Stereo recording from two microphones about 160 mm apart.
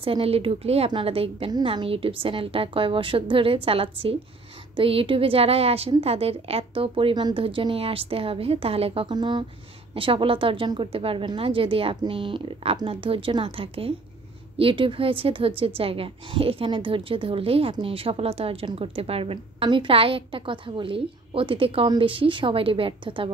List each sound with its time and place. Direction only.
0.0 s a woman's voice: 35° right (ahead or behind)
9.0 s a woman's voice: 25° right (ahead or behind)